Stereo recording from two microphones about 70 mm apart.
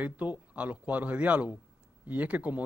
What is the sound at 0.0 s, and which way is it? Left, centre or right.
Speech, right.